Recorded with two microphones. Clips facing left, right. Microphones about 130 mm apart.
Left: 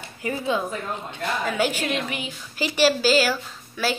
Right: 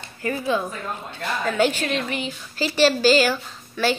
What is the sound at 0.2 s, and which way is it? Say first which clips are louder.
A woman's voice: right 1 dB; 15° left (ahead or behind).